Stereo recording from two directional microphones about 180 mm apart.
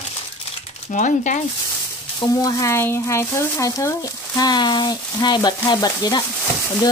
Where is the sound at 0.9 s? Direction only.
45° left (ahead or behind).